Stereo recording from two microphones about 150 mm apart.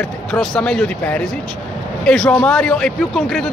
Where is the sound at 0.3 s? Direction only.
5° left (ahead or behind).